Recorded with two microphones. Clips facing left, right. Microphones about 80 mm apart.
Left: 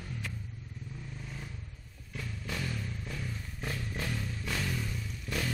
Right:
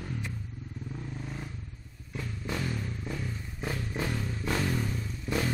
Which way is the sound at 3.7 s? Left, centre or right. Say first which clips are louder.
Right 4 dB; right.